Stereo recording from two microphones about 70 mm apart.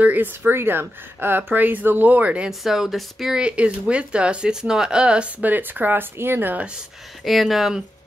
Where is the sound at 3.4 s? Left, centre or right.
Centre; by 6.5 s right.